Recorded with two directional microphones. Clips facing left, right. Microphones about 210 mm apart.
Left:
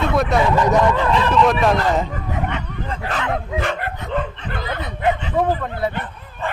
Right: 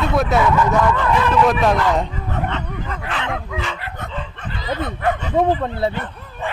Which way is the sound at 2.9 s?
40° left (ahead or behind).